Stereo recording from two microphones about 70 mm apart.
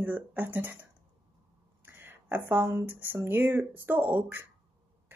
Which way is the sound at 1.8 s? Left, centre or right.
Right.